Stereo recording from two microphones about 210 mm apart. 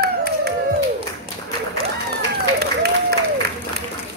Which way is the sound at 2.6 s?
50° right (ahead or behind).